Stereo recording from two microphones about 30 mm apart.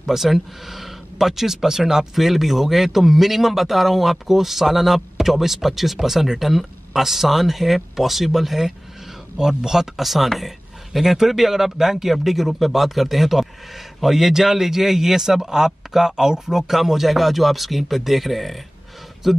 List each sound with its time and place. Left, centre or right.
0.0 s speech: centre
9.4 s speech: centre
9.9 s speech: centre